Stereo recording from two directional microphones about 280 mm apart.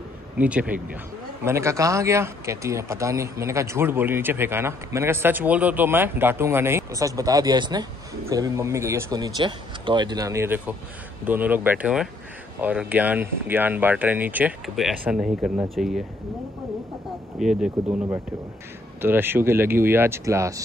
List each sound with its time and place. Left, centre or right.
0.4 s speech: centre
17.4 s speech: centre
18.9 s speech: centre